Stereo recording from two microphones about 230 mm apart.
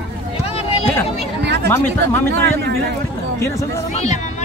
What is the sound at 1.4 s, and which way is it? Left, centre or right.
Chatter, right.